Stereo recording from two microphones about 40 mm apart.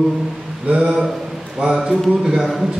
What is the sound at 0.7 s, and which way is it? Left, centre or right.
Speech, right.